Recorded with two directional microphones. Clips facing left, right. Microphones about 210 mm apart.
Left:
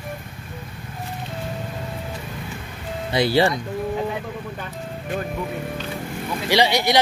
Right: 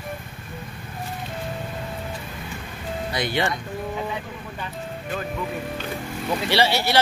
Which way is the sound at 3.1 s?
30° left (ahead or behind).